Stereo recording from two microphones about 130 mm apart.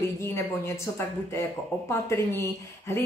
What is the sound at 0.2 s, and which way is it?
Speech, 20° left (ahead or behind).